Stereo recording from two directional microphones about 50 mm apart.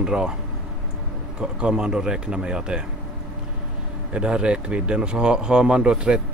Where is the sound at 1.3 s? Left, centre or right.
Centre.